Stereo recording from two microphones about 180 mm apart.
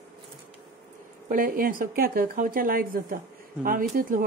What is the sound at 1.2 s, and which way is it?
Speech, 50° right (ahead or behind).